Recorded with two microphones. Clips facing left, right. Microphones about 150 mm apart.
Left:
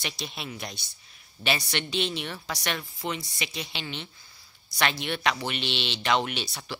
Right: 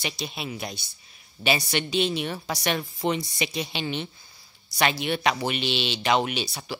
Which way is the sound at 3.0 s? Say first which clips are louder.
Right 7 dB; 20° right (ahead or behind).